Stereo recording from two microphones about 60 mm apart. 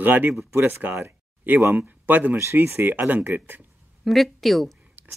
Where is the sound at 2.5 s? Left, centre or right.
Right.